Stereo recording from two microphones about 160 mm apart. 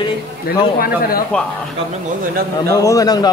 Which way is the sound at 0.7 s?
65° left (ahead or behind).